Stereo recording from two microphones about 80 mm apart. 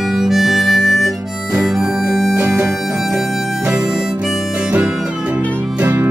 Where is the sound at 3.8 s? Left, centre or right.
Centre.